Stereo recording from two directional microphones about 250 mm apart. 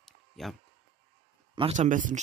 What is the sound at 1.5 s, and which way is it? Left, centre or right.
Speech, right.